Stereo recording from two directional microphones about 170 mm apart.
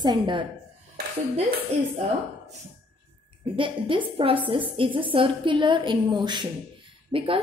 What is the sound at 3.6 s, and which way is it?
A woman's voice, 30° right (ahead or behind).